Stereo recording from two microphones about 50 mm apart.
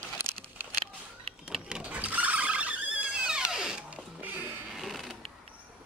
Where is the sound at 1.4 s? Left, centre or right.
Centre.